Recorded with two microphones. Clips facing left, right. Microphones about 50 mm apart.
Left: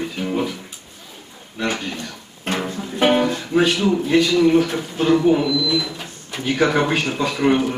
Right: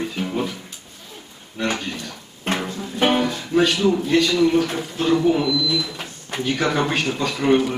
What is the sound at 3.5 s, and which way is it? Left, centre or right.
A man's voice, centre.